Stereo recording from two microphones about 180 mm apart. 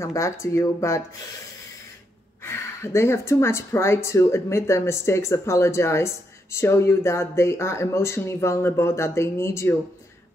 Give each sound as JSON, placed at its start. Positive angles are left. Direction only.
{"t": 0.0, "sound": "speech", "side_deg": 15}
{"t": 2.4, "sound": "speech", "side_deg": 15}